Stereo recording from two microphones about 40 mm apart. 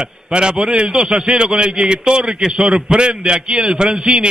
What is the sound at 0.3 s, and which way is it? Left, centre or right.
A man's voice, right.